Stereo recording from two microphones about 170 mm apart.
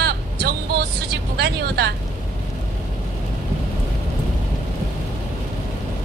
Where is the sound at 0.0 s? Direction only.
70° right (ahead or behind).